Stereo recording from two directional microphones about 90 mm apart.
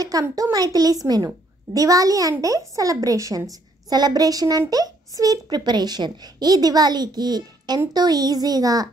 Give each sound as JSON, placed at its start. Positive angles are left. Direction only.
{"t": 0.0, "sound": "a woman's voice", "side_deg": -40}